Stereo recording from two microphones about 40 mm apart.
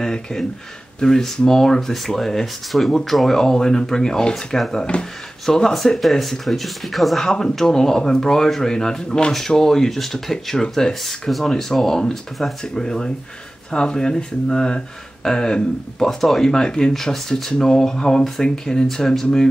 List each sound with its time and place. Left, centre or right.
0.0 s speech: centre
3.3 s speech: centre
5.4 s speech: centre
7.2 s speech: centre
12.6 s speech: centre
16.1 s speech: centre
16.4 s speech: centre